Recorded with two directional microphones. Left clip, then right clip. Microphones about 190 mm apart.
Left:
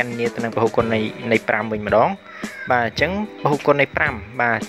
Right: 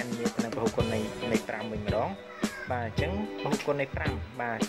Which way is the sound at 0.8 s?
25° left (ahead or behind).